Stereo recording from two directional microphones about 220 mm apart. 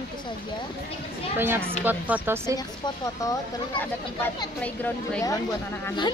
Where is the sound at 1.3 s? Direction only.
10° right (ahead or behind).